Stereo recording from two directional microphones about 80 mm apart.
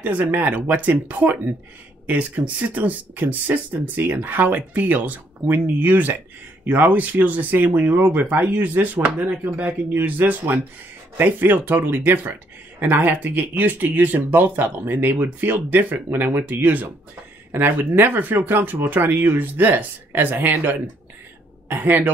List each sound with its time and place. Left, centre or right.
0.0 s speech: right